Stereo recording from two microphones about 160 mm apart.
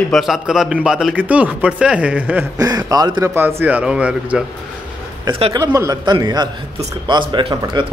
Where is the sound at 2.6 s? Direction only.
25° right (ahead or behind).